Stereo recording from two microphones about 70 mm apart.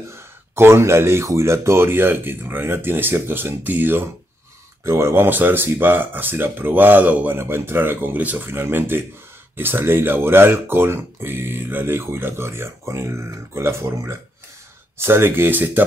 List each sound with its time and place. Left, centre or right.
0.1 s speech: right
4.8 s speech: right
8.5 s speech: right